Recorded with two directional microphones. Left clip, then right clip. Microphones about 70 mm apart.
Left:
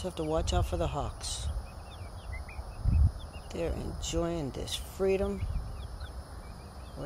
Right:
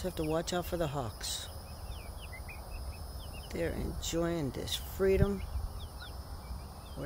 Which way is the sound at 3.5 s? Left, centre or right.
Right.